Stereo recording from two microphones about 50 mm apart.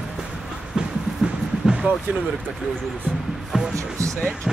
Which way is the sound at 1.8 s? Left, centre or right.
Right.